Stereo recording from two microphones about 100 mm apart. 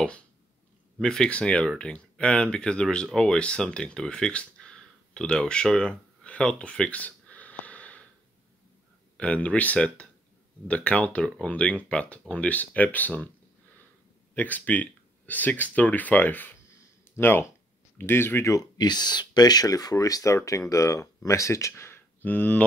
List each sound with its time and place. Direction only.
1.0 s speech: 5° left (ahead or behind)
9.1 s speech: 10° left (ahead or behind)
14.3 s speech: 15° left (ahead or behind)
18.8 s speech: 45° left (ahead or behind); by 22.6 s 15° left (ahead or behind)